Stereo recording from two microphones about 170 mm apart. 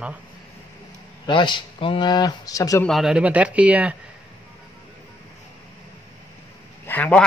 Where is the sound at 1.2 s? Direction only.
25° left (ahead or behind).